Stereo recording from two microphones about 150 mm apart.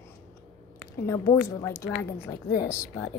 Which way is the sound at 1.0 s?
20° left (ahead or behind).